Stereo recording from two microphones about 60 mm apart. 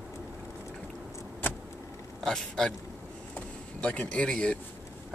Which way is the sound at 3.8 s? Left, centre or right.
Centre.